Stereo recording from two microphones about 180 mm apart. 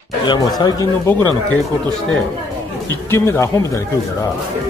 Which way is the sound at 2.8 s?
15° left (ahead or behind).